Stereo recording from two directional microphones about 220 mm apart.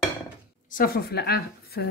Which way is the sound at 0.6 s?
40° left (ahead or behind).